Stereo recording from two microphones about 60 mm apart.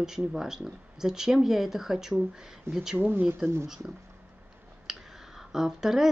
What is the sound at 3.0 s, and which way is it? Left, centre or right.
Speech, right.